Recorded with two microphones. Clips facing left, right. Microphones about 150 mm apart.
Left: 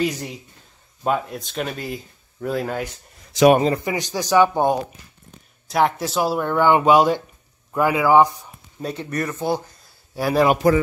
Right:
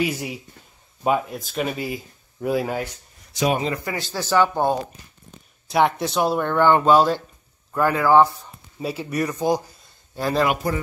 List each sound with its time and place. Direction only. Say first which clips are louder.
0.0 s speech: left 1 dB; 10° right (ahead or behind)
3.7 s speech: left 4 dB; 20° left (ahead or behind)
5.7 s speech: even; centre (ahead or behind)
8.7 s speech: right 1 dB; 5° right (ahead or behind)
10.1 s speech: left 3 dB; 10° left (ahead or behind)